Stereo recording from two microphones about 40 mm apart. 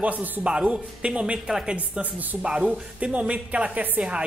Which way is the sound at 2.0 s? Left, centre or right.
Right.